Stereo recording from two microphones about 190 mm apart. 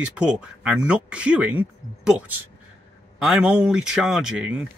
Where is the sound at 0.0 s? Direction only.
5° right (ahead or behind).